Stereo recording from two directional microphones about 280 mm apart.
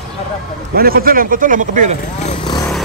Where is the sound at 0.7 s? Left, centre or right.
Right.